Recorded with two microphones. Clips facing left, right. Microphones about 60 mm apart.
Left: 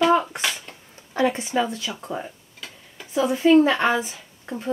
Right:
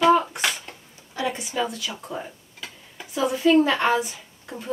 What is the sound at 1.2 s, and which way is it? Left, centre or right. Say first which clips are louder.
Speech: left 5 dB; left.